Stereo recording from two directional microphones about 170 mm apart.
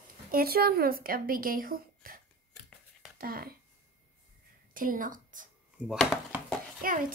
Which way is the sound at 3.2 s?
60° right (ahead or behind).